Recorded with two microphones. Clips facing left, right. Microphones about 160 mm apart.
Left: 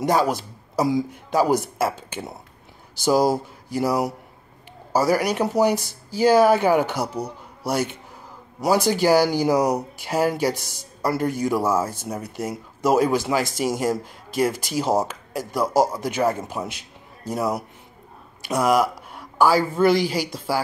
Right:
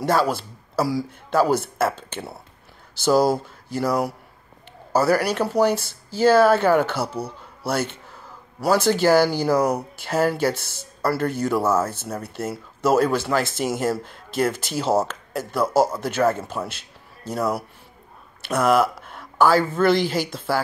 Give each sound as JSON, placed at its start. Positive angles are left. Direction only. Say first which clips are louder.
{"t": 0.0, "sound": "speech", "louder": "even", "side_deg": 15}